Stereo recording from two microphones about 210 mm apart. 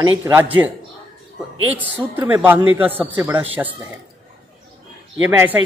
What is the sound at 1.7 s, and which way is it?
A man's voice, 10° right (ahead or behind).